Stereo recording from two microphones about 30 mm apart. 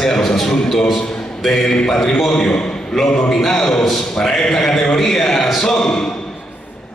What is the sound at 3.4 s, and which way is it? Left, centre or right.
Speech, centre.